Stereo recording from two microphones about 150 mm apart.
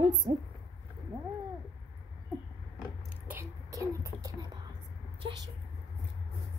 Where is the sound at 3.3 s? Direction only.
20° right (ahead or behind).